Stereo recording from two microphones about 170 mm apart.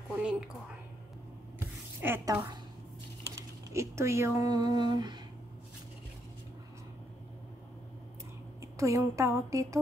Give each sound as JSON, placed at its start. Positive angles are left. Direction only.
{"t": 0.2, "sound": "speech", "side_deg": -5}
{"t": 2.0, "sound": "a woman's voice", "side_deg": -10}
{"t": 3.3, "sound": "typing", "side_deg": -15}
{"t": 8.5, "sound": "a woman's voice", "side_deg": -20}